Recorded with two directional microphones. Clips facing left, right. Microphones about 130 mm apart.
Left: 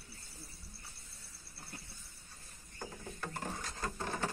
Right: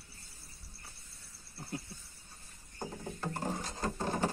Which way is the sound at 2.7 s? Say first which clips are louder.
Right 4 dB; 25° right (ahead or behind).